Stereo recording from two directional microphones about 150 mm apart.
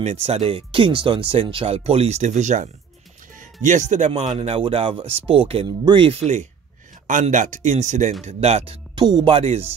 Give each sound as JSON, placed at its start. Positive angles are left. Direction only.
{"t": 0.0, "sound": "speech", "side_deg": -45}
{"t": 7.1, "sound": "speech", "side_deg": -60}